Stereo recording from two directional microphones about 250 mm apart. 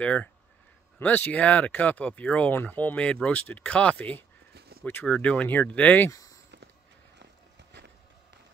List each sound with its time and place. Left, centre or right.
0.0 s speech: centre
4.6 s a sound: right
4.8 s speech: centre